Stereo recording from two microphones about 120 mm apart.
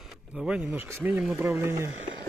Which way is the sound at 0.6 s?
15° right (ahead or behind).